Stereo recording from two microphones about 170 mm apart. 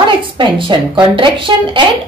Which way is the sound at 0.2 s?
30° right (ahead or behind).